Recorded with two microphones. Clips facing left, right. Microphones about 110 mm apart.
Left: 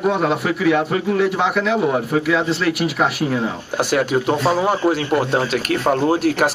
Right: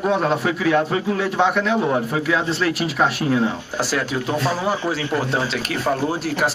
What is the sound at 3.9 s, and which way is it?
Speech, 55° left (ahead or behind).